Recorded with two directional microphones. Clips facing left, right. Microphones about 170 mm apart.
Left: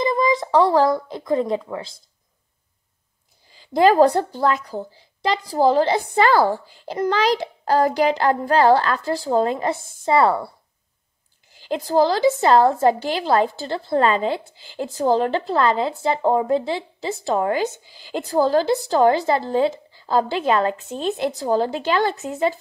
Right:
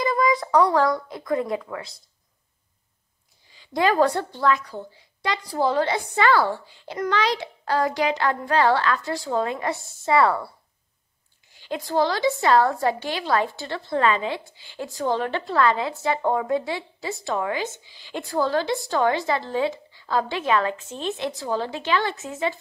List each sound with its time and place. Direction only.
0.0 s speech: 25° left (ahead or behind)
3.8 s a woman's voice: 35° left (ahead or behind)
11.6 s a woman's voice: 35° left (ahead or behind)